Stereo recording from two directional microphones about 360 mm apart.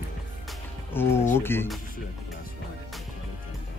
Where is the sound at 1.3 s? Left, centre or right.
Centre.